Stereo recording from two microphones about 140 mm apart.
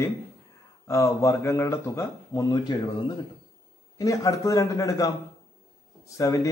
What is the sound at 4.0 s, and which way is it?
Speech, 25° left (ahead or behind).